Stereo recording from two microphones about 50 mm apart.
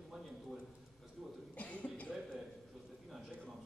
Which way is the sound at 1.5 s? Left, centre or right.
Left.